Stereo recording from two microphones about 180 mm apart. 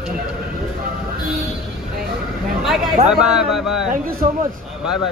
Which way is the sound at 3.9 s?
55° right (ahead or behind).